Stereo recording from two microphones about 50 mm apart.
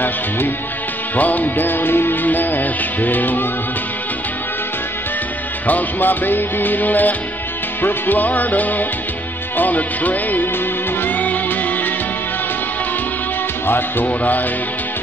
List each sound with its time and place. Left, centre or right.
1.1 s music: left
5.7 s music: left
13.7 s speech: left
14.0 s music: left